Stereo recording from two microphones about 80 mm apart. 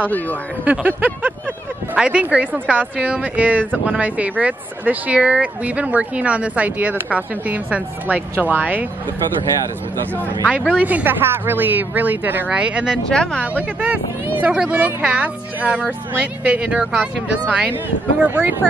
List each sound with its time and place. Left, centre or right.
0.7 s speech: right
10.5 s speech: centre
13.1 s speech: centre
13.4 s speech: centre